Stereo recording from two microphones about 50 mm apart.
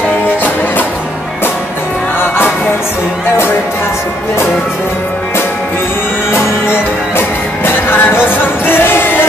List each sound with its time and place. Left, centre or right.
2.1 s music: left
6.3 s music: left